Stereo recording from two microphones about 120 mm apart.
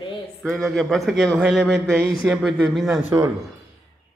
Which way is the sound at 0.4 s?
5° left (ahead or behind).